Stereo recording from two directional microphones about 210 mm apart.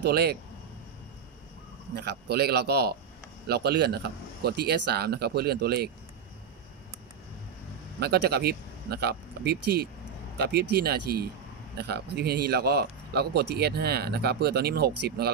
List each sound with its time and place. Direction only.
0.0 s speech: 50° right (ahead or behind)
2.0 s speech: 50° right (ahead or behind)
8.0 s speech: 50° right (ahead or behind)